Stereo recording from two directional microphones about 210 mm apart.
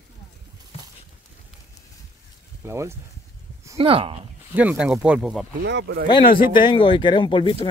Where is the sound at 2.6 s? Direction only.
10° right (ahead or behind).